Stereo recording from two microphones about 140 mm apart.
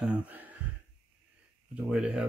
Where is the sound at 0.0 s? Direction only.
10° right (ahead or behind).